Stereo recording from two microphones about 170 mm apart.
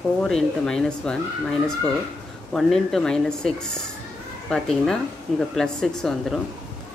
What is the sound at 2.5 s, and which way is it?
Speech, 5° left (ahead or behind).